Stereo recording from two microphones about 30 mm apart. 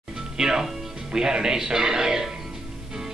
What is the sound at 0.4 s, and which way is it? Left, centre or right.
A man's voice, centre.